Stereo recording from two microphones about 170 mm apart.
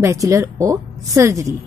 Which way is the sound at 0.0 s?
15° right (ahead or behind).